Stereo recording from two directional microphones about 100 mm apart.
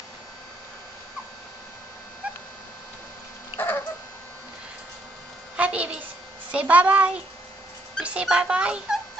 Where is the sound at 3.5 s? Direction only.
20° left (ahead or behind).